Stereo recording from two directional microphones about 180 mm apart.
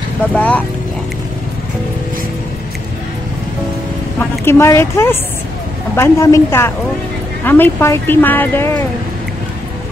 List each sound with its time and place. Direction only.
0.3 s speech: 5° left (ahead or behind)
4.2 s speech: 15° left (ahead or behind)